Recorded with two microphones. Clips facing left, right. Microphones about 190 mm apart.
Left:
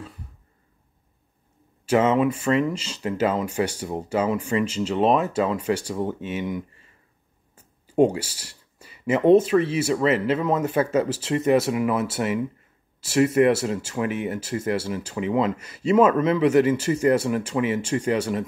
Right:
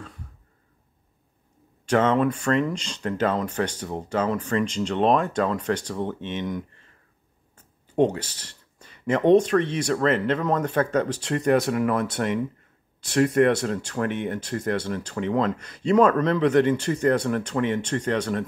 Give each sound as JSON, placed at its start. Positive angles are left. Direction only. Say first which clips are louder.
{"t": 1.9, "sound": "speech", "louder": "left 1 dB", "side_deg": 5}